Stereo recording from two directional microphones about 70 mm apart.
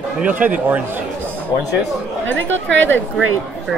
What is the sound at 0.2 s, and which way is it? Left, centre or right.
Speech, right.